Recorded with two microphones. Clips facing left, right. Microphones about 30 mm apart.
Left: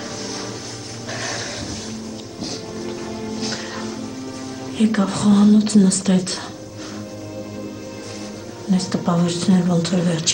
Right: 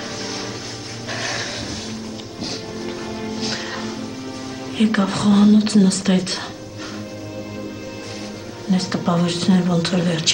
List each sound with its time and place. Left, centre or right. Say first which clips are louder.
1.1 s a sound: right 2 dB; right
3.3 s music: right 2 dB; right
4.7 s speech: even; right
8.6 s speech: even; right